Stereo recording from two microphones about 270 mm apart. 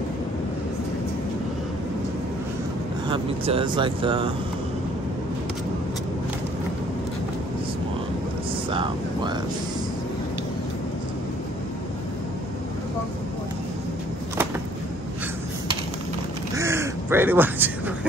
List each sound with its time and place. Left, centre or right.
3.1 s speech: centre
8.6 s speech: centre
16.5 s a sound: centre